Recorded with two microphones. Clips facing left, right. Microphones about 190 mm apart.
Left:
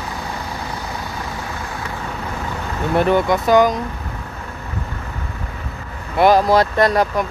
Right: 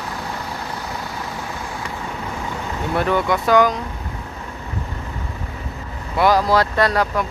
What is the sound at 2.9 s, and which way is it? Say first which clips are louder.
Speech: left 4 dB; 20° left (ahead or behind).